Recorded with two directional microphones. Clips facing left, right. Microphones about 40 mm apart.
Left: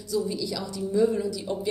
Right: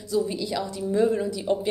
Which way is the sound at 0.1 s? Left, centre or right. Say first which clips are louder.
Right 2 dB; right.